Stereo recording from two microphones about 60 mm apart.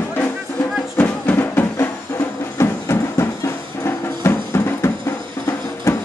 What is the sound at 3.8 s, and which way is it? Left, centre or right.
Music, left.